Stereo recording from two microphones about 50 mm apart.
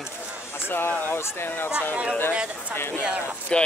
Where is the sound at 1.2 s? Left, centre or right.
Left.